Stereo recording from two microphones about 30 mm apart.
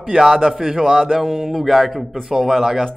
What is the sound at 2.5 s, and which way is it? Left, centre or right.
Speech, centre.